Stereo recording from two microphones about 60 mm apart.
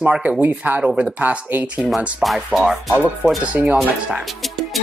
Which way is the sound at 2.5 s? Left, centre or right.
Centre.